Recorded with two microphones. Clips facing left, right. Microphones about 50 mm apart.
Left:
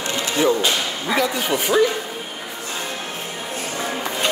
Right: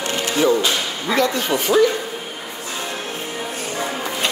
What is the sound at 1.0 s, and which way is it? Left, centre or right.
Speech, centre.